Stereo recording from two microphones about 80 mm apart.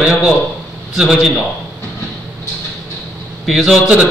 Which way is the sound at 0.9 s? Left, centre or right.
Centre.